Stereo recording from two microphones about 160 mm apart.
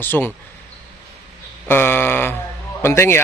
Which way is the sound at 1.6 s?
15° left (ahead or behind).